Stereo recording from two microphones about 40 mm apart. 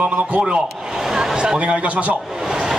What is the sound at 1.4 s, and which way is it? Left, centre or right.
Speech, right.